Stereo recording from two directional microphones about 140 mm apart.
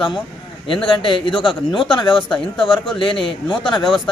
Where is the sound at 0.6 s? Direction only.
35° left (ahead or behind).